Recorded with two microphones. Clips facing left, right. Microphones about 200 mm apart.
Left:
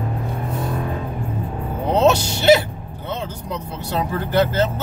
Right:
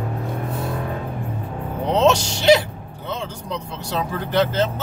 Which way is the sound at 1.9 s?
5° left (ahead or behind).